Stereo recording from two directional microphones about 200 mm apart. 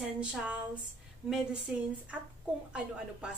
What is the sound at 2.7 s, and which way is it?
Speech, 5° right (ahead or behind).